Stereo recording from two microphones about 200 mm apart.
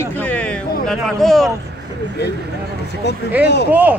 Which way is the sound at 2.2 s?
55° left (ahead or behind).